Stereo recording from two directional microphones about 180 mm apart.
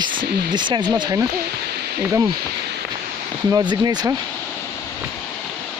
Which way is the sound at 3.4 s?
20° right (ahead or behind).